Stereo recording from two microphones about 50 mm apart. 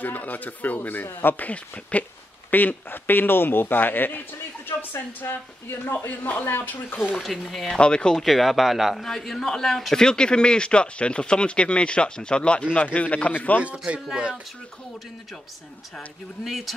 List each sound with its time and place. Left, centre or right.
0.0 s a man's voice: left
2.5 s a man's voice: left
7.4 s a man's voice: centre
8.2 s a man's voice: centre; by 13.6 s left
13.6 s speech: right
16.4 s speech: centre